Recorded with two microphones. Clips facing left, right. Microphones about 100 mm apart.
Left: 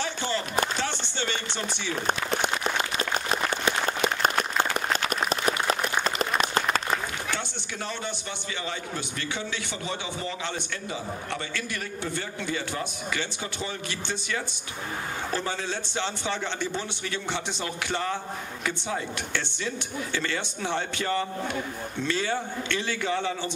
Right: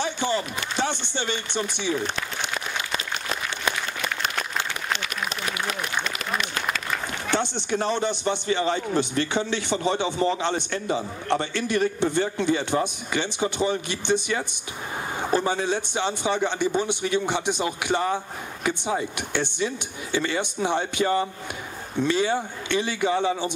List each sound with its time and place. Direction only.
0.0 s a sound: 15° right (ahead or behind)
0.7 s speech: 15° right (ahead or behind)
4.2 s applause: 40° left (ahead or behind)
7.2 s a man's voice: 25° right (ahead or behind)